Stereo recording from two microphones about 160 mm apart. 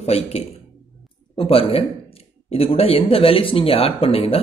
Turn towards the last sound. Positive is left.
turn(degrees=35)  # may be behind; listen again after turning